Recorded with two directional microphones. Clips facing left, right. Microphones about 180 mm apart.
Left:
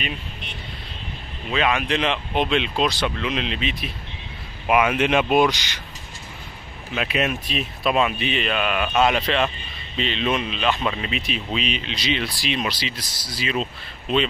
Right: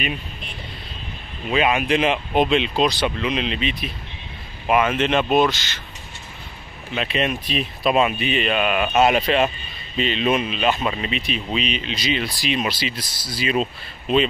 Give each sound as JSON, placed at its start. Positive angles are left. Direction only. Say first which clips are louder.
{"t": 1.5, "sound": "speech", "louder": "right 3 dB", "side_deg": -10}
{"t": 7.0, "sound": "speech", "louder": "right 1 dB", "side_deg": 5}
{"t": 12.9, "sound": "speech", "louder": "right 3 dB", "side_deg": -30}